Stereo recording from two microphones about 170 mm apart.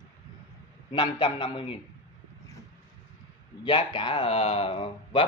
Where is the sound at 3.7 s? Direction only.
30° left (ahead or behind).